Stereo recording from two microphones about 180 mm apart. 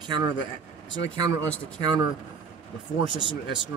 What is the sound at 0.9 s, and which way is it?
Speech, 90° left.